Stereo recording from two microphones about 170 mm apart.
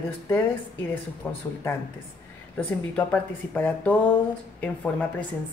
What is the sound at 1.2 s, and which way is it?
Speech, 10° left (ahead or behind).